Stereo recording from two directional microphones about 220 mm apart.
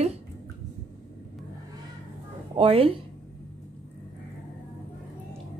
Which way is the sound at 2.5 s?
25° right (ahead or behind).